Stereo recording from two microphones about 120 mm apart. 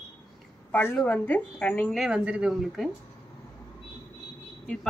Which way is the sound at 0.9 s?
10° left (ahead or behind).